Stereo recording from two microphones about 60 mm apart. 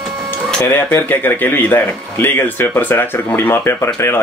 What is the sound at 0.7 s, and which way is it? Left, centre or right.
Speech, left.